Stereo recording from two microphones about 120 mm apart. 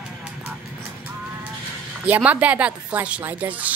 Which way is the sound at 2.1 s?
10° right (ahead or behind).